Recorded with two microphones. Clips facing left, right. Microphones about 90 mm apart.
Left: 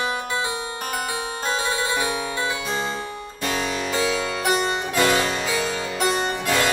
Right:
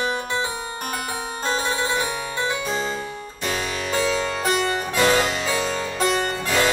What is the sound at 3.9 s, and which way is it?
Harpsichord, 10° left (ahead or behind).